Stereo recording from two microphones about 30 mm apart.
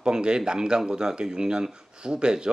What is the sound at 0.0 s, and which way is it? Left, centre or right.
Speech, right.